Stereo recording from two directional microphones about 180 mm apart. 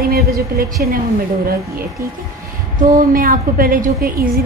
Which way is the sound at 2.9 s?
50° right (ahead or behind).